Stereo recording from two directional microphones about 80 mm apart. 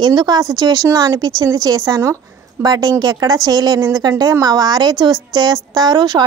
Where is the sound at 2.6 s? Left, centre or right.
Right.